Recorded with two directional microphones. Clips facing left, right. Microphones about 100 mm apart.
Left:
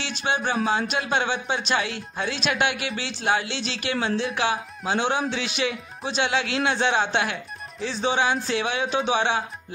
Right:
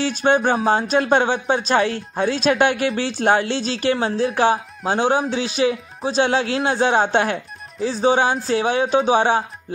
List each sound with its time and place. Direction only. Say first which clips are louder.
0.0 s speech: right 9 dB; 45° right (ahead or behind)